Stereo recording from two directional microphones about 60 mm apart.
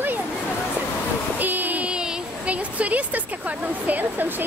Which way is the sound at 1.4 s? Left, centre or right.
Right.